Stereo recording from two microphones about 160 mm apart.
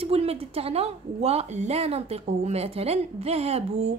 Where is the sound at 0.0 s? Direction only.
40° right (ahead or behind).